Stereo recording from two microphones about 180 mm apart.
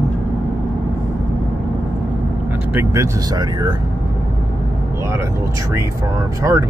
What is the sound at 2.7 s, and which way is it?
Speech, 10° right (ahead or behind).